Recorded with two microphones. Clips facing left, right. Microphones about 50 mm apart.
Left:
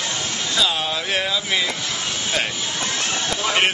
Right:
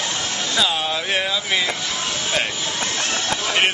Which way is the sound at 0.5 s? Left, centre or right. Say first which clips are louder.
Right 1 dB; centre.